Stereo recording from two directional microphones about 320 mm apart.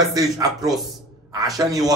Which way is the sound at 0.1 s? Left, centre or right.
Centre.